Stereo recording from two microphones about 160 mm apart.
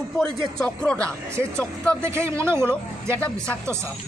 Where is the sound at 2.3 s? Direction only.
15° right (ahead or behind).